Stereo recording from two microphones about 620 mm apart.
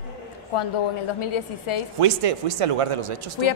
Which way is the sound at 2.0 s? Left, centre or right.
Right.